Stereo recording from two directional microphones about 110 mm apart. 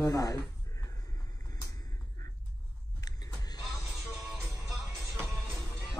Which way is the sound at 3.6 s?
Centre (ahead or behind).